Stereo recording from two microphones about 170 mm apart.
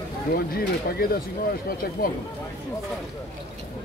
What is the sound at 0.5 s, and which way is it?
Speech, 65° left (ahead or behind).